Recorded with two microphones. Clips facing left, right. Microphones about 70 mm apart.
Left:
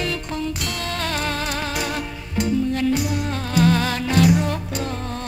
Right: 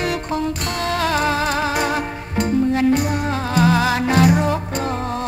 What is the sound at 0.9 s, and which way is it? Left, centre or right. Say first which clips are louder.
Music: right 7 dB; right.